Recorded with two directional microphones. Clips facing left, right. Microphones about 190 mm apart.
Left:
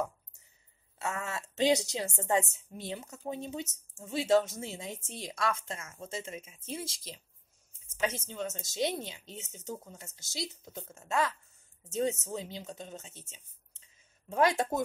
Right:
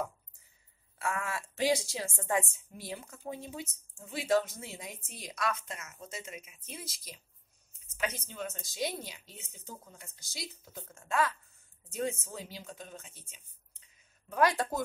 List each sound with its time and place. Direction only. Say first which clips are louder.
0.9 s speech: right 1 dB; 25° left (ahead or behind)
8.0 s speech: left 3 dB; 25° left (ahead or behind)